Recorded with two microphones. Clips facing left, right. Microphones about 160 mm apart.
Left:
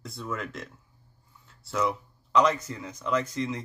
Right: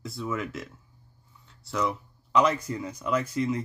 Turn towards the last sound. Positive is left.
turn(degrees=-10)  # may be behind; listen again after turning